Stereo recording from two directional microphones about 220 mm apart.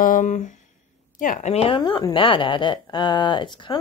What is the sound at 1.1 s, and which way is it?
A woman's voice, 35° left (ahead or behind).